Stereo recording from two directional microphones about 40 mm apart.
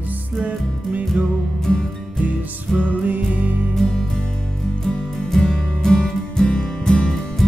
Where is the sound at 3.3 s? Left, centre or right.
Right.